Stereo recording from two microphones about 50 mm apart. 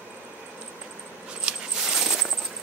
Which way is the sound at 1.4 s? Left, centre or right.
Centre.